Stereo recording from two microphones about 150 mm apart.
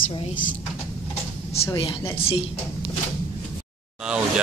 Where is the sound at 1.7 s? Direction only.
35° left (ahead or behind).